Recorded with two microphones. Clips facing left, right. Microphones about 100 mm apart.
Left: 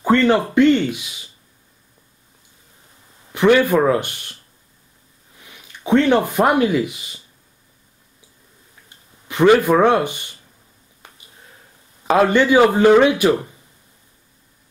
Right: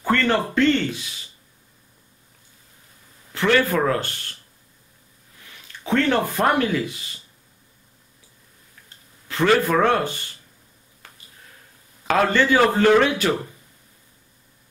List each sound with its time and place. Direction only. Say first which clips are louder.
0.0 s a man's voice: left 5 dB; 15° left (ahead or behind)
3.3 s a man's voice: left 6 dB; 15° left (ahead or behind)
5.4 s speech: left 5 dB; 15° left (ahead or behind)
8.8 s speech: left 4 dB; 15° left (ahead or behind)
12.1 s a man's voice: left 4 dB; 15° left (ahead or behind)